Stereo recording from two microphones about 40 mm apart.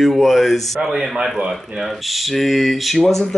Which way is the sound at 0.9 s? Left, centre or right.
Centre.